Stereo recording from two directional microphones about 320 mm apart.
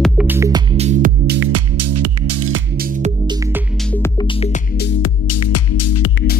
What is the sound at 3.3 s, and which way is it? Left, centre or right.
Music, centre.